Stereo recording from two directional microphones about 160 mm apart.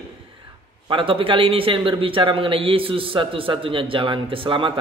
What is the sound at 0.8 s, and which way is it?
A man's voice, 35° right (ahead or behind).